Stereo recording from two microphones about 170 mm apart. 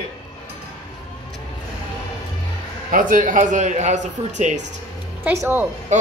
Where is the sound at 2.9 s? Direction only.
50° right (ahead or behind).